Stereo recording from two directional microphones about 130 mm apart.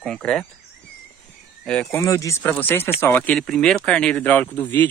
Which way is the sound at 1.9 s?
25° left (ahead or behind).